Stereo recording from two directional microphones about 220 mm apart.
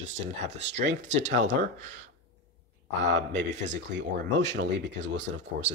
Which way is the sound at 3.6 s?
55° right (ahead or behind).